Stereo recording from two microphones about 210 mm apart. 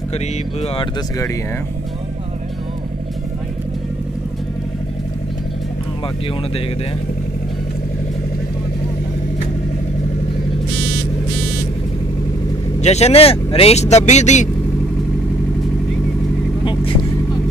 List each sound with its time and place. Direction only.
0.1 s speech: 30° left (ahead or behind)
12.8 s speech: 30° left (ahead or behind)